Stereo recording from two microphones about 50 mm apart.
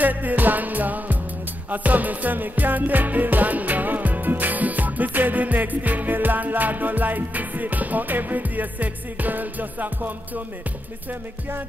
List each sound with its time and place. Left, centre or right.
0.0 s music: right